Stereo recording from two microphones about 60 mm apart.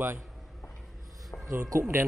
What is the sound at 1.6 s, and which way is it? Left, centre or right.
Speech, right.